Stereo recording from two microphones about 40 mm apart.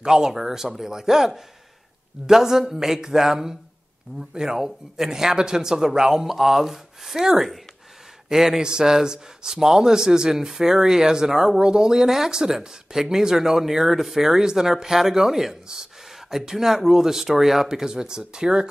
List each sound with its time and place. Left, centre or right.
0.0 s speech: centre
17.6 s speech: centre